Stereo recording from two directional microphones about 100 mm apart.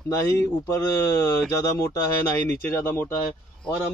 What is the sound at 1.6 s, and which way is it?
Speech, 35° left (ahead or behind).